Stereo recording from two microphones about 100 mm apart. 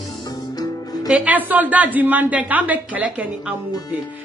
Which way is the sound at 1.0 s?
10° right (ahead or behind).